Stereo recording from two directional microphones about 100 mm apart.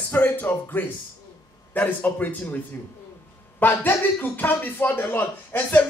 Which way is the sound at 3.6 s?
20° left (ahead or behind).